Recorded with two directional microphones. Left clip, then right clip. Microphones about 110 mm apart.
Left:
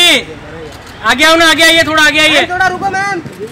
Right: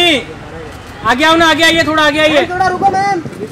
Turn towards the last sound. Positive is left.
turn(degrees=40)  # may be behind; listen again after turning